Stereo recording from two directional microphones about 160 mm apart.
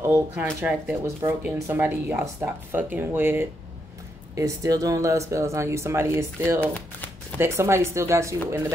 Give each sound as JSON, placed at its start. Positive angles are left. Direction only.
{"t": 0.0, "sound": "speech", "side_deg": -15}
{"t": 6.6, "sound": "speech", "side_deg": 10}
{"t": 7.3, "sound": "speech", "side_deg": -15}